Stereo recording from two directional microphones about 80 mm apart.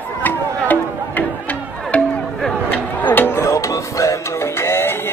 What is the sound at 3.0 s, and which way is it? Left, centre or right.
Music, left.